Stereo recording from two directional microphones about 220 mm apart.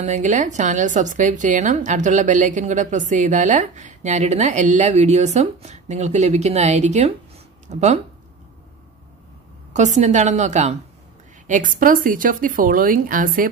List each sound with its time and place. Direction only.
0.0 s a woman's voice: 35° right (ahead or behind)
9.7 s a woman's voice: 30° right (ahead or behind)